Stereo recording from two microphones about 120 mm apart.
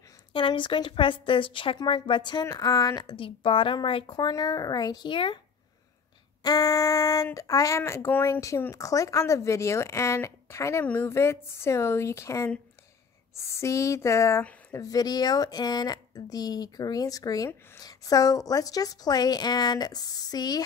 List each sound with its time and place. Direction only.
0.3 s a woman's voice: 45° left (ahead or behind)
3.1 s a woman's voice: 45° left (ahead or behind)
6.4 s a woman's voice: 30° left (ahead or behind)